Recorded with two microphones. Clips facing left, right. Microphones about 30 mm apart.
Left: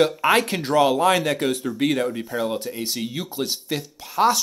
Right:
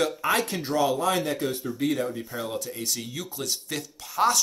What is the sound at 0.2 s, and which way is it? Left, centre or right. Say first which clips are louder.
Speech: left 6 dB; left.